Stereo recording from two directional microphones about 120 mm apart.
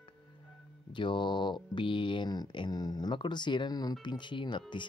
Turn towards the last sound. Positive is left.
turn(degrees=40)  # may be behind; listen again after turning